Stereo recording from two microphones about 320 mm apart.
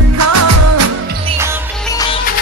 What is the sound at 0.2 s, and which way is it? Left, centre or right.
Music, right.